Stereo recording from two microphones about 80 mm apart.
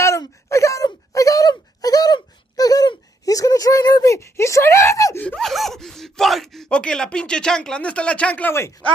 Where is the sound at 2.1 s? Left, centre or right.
Left.